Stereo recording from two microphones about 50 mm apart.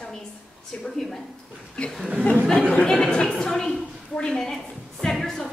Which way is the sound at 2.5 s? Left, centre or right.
Centre.